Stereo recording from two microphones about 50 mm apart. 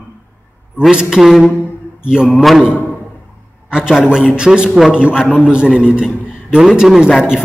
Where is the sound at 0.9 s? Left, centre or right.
Centre.